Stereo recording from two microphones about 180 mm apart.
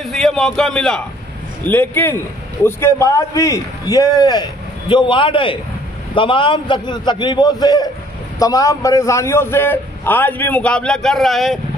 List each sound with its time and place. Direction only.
0.0 s a man's voice: centre (ahead or behind)